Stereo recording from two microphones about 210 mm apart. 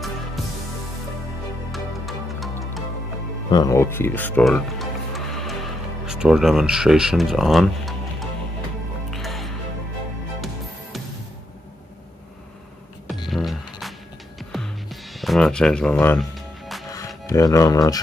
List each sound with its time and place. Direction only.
1.7 s music: centre (ahead or behind)
3.4 s music: 20° left (ahead or behind); by 9.5 s centre (ahead or behind)
13.3 s music: centre (ahead or behind)
16.9 s speech: 15° left (ahead or behind)